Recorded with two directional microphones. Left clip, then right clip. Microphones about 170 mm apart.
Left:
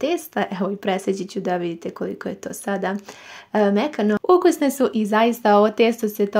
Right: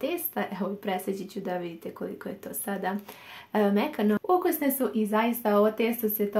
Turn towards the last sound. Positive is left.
turn(degrees=55)  # may be behind; listen again after turning